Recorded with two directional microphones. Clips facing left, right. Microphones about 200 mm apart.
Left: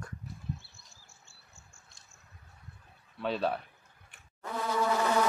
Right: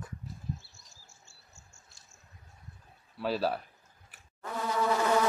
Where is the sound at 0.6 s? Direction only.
60° left (ahead or behind).